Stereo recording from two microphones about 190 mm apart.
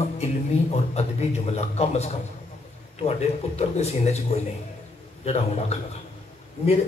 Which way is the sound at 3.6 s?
35° left (ahead or behind).